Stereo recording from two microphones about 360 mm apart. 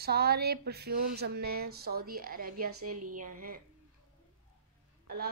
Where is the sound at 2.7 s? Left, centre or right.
Right.